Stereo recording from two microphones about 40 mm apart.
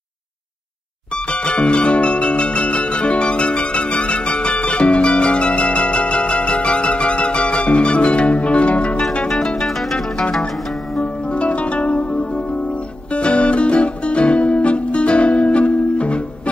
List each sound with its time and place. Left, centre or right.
1.1 s music: left
9.7 s zither: centre
9.9 s music: centre